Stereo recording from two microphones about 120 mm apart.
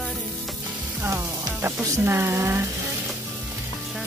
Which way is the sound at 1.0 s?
20° right (ahead or behind).